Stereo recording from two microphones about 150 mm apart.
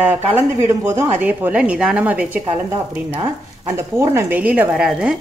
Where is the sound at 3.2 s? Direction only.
20° right (ahead or behind); by 5.1 s 5° right (ahead or behind).